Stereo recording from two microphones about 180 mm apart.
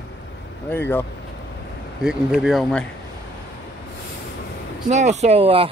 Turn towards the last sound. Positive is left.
turn(degrees=-30)  # may be behind; listen again after turning